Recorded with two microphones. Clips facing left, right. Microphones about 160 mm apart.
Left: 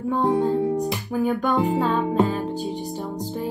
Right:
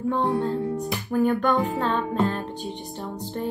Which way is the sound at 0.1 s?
15° left (ahead or behind).